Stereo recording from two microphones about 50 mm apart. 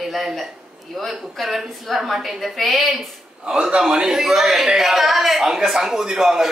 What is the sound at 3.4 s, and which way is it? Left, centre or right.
Speech, centre.